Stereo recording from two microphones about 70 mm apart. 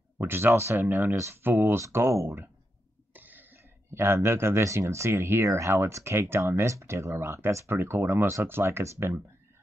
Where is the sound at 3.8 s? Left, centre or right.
Right.